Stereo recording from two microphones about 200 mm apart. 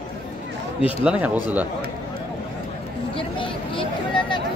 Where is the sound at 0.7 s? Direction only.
25° left (ahead or behind).